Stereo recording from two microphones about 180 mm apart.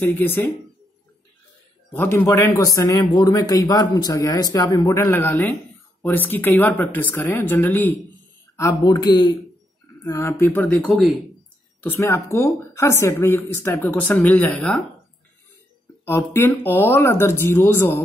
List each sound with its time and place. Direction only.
0.1 s speech: 10° left (ahead or behind)
2.0 s speech: 15° left (ahead or behind)
11.8 s speech: 10° left (ahead or behind)
16.1 s speech: 15° left (ahead or behind)